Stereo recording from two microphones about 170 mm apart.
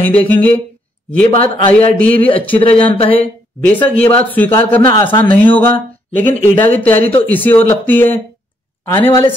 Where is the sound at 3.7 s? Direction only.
10° left (ahead or behind).